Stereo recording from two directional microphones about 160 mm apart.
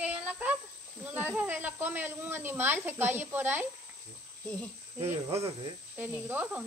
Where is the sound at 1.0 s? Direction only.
10° right (ahead or behind).